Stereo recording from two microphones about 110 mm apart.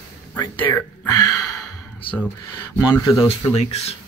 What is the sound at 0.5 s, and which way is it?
Speech, 20° left (ahead or behind).